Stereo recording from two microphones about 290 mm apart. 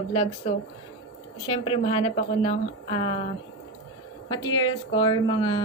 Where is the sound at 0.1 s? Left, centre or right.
Centre.